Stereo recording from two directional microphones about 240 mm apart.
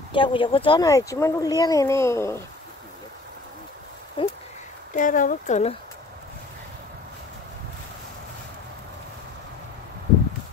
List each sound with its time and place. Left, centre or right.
0.1 s speech: left
4.2 s a sound: left
4.9 s speech: left